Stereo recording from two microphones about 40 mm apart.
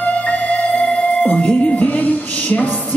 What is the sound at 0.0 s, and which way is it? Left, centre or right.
Music, left.